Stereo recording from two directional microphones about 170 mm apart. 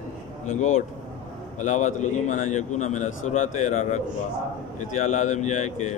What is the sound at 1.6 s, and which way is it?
A man's voice, 45° left (ahead or behind).